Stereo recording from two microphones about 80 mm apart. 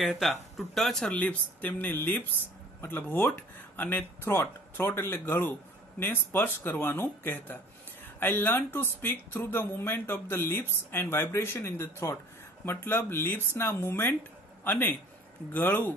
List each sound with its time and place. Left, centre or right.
0.0 s speech: centre
1.1 s a man's voice: centre